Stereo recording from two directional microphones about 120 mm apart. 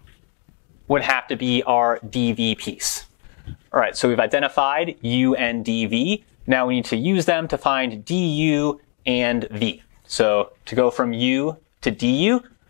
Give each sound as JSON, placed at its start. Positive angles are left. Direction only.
{"t": 0.9, "sound": "speech", "side_deg": 0}
{"t": 1.7, "sound": "speech", "side_deg": 10}
{"t": 2.0, "sound": "speech", "side_deg": -5}
{"t": 3.8, "sound": "speech", "side_deg": 0}
{"t": 10.7, "sound": "speech", "side_deg": 25}
{"t": 11.1, "sound": "speech", "side_deg": -10}